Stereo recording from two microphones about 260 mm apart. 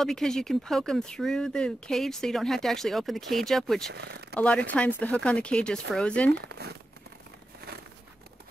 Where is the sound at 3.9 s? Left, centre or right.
Right.